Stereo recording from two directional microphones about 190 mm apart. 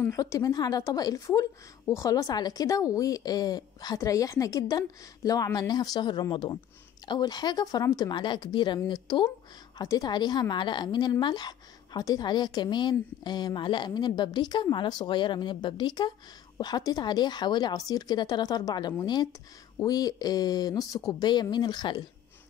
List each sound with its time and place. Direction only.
0.0 s a woman's voice: 15° left (ahead or behind)